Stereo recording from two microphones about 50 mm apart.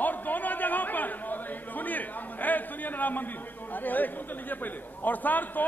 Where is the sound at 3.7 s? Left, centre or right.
Left.